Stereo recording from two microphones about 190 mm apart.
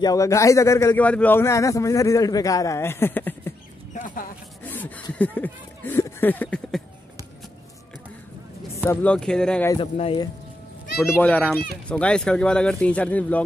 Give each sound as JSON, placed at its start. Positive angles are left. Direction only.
{"t": 0.0, "sound": "speech", "side_deg": 15}
{"t": 3.9, "sound": "a sound", "side_deg": 45}
{"t": 4.6, "sound": "a sound", "side_deg": 10}
{"t": 5.2, "sound": "speech", "side_deg": 10}
{"t": 8.7, "sound": "speech", "side_deg": 5}
{"t": 9.9, "sound": "speech", "side_deg": 25}
{"t": 11.0, "sound": "speech", "side_deg": 10}